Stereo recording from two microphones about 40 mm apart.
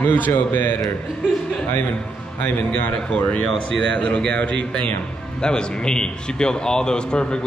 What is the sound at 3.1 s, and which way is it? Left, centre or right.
Speech, left.